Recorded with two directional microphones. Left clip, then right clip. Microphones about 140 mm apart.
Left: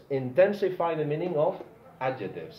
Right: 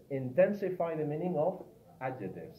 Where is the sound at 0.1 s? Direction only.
30° left (ahead or behind).